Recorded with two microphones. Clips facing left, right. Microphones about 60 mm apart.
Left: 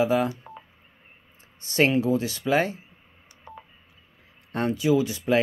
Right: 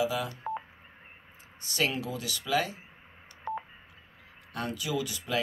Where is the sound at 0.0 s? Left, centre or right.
Left.